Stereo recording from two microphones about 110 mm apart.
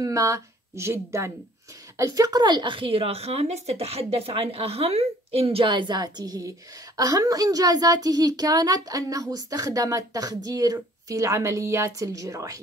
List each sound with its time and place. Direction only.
0.0 s a woman's voice: 30° right (ahead or behind); by 5.7 s 65° right (ahead or behind)
5.7 s a woman's voice: 45° right (ahead or behind)